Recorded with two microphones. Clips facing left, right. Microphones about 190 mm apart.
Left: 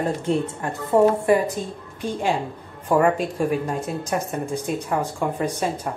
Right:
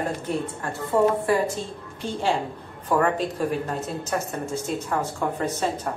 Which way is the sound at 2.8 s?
10° left (ahead or behind).